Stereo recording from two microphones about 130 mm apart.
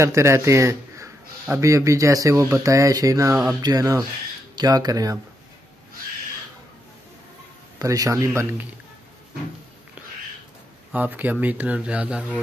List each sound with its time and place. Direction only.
0.0 s a man's voice: 20° right (ahead or behind)
7.8 s speech: 25° right (ahead or behind)
10.9 s speech: 10° right (ahead or behind)